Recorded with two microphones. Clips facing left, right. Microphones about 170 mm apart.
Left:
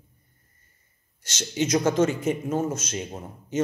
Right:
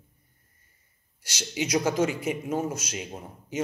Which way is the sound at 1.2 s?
10° right (ahead or behind).